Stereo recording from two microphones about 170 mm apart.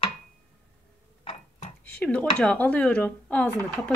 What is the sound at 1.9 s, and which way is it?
Speech, 5° left (ahead or behind).